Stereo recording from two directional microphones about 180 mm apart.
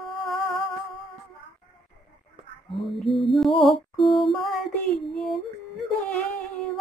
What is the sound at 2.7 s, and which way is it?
Music, centre (ahead or behind).